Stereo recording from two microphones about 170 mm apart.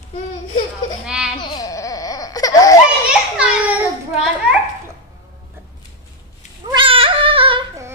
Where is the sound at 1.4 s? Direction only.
25° left (ahead or behind).